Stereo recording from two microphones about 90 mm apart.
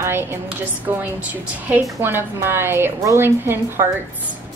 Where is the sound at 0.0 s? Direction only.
25° right (ahead or behind).